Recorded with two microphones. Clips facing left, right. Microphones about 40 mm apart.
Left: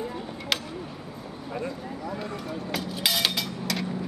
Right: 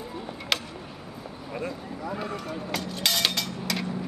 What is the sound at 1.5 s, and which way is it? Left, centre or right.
Speech, centre.